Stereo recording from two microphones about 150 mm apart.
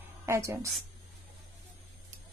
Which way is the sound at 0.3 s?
20° right (ahead or behind).